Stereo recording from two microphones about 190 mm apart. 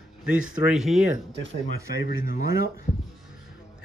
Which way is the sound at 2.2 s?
50° left (ahead or behind).